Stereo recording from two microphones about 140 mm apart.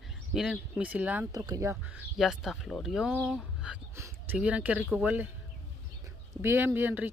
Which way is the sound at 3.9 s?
20° right (ahead or behind).